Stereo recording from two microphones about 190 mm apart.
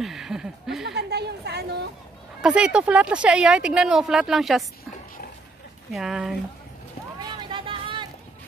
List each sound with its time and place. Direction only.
0.0 s speech: centre (ahead or behind)
0.8 s chatter: 60° right (ahead or behind)
2.4 s speech: 5° right (ahead or behind)
5.9 s speech: centre (ahead or behind)
7.2 s vehicle: 20° right (ahead or behind)